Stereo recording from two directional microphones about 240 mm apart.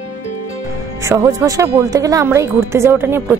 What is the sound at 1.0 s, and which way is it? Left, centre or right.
A woman's voice, centre.